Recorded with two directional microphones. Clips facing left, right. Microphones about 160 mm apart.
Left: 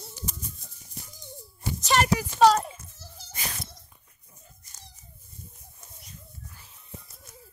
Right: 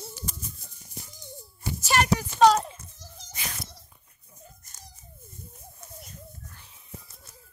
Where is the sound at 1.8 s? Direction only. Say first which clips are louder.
Left 1 dB; 5° right (ahead or behind).